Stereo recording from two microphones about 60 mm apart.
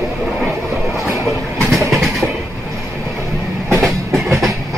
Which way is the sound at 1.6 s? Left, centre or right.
Centre.